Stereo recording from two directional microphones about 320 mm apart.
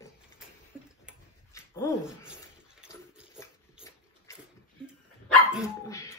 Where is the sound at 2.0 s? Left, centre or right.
Centre.